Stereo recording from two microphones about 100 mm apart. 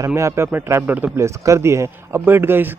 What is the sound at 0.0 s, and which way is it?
Speech, 30° right (ahead or behind).